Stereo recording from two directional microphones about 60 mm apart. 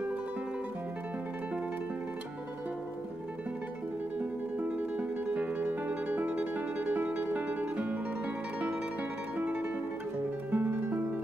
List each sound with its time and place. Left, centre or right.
4.6 s music: right
9.4 s guitar: right
10.5 s music: right